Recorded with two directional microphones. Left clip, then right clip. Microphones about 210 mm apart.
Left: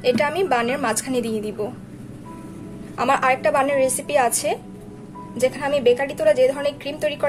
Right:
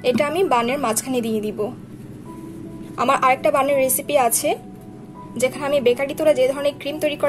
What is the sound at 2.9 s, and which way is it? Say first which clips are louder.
A woman's voice: right 2 dB; 20° right (ahead or behind).